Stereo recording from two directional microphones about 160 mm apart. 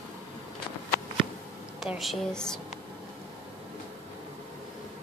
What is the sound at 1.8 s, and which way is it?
Speech, centre (ahead or behind).